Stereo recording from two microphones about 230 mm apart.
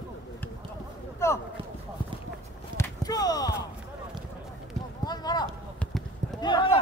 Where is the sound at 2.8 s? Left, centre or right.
Centre.